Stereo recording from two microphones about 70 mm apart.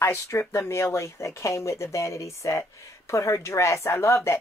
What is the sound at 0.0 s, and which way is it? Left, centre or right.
Speech, left.